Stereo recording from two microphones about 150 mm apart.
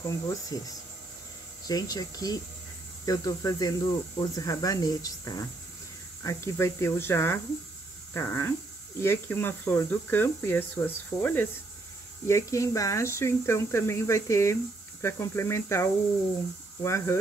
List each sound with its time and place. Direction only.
0.1 s speech: 25° left (ahead or behind)